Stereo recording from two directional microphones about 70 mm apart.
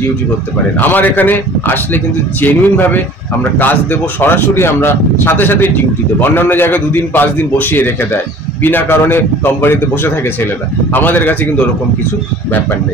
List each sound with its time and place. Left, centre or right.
0.7 s a man's voice: left